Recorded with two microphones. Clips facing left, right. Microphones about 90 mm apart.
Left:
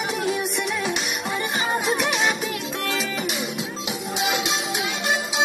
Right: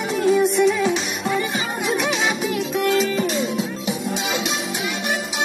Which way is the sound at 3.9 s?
15° left (ahead or behind).